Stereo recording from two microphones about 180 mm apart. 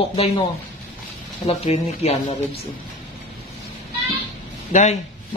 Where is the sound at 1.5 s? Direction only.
35° left (ahead or behind).